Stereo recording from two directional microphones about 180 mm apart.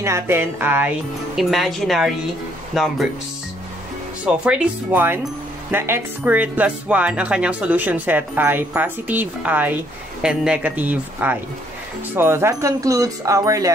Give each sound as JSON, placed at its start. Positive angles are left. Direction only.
{"t": 0.0, "sound": "speech", "side_deg": -15}
{"t": 4.2, "sound": "speech", "side_deg": -5}